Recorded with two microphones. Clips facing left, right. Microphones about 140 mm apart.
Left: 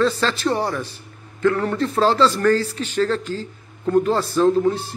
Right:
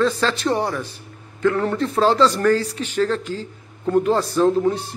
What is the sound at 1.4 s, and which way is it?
Speech, 15° right (ahead or behind).